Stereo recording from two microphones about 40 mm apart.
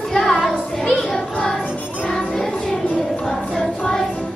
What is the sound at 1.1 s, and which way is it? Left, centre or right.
Music, centre.